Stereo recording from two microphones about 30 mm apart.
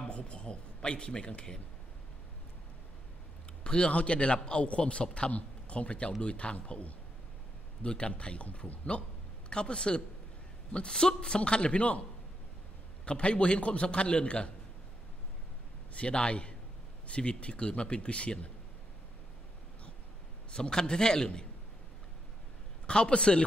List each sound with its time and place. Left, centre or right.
0.1 s a man's voice: left
3.6 s speech: left
3.9 s a man's voice: left
7.8 s a man's voice: left
9.5 s a man's voice: left
13.0 s a man's voice: left
15.9 s a man's voice: left
20.7 s a man's voice: left
22.8 s a man's voice: left